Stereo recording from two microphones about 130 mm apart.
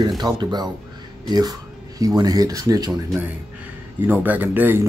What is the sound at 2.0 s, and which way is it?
Speech, 30° right (ahead or behind).